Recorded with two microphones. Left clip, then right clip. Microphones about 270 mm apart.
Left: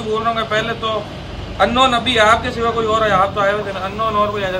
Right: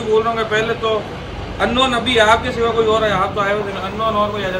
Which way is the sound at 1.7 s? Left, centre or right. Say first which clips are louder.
Even; centre.